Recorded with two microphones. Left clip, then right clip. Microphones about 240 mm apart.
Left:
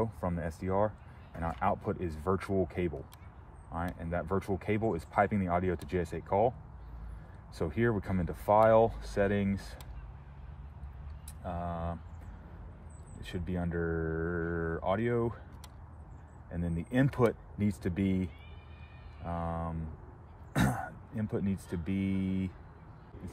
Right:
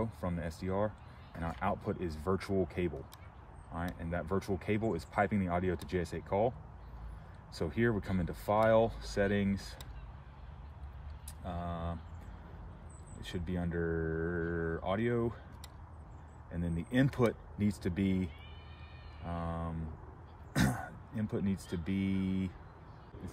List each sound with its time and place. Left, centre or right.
0.0 s a sound: centre
0.7 s speech: centre
1.3 s speech: centre
3.7 s speech: centre
7.5 s speech: centre
11.4 s speech: centre
13.3 s speech: centre
16.5 s speech: centre
20.5 s a sound: centre
21.6 s speech: centre
22.1 s speech: left